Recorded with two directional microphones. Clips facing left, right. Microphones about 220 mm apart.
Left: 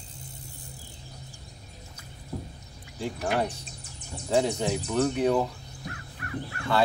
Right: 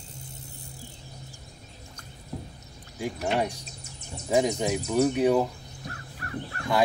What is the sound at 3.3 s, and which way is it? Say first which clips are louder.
Speech: right 1 dB; 10° right (ahead or behind).